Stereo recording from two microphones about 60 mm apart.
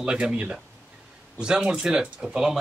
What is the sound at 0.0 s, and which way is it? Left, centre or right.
Speech, centre.